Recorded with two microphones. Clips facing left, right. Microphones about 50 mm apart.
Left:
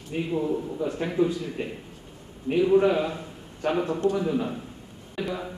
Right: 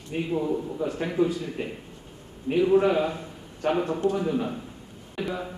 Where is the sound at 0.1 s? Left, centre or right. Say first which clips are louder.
Even; centre.